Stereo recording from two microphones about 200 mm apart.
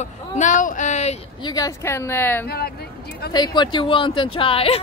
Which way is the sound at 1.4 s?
20° left (ahead or behind).